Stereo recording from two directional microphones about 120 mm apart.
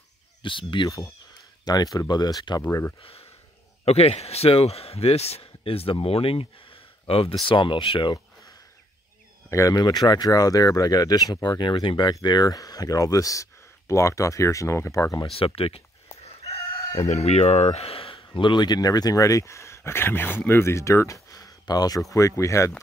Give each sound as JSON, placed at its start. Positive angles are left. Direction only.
{"t": 0.4, "sound": "speech", "side_deg": 45}
{"t": 2.6, "sound": "speech", "side_deg": 20}
{"t": 3.0, "sound": "a man's voice", "side_deg": 50}
{"t": 9.5, "sound": "speech", "side_deg": 25}
{"t": 15.3, "sound": "speech", "side_deg": 50}
{"t": 16.6, "sound": "chicken", "side_deg": 25}
{"t": 17.1, "sound": "speech", "side_deg": 65}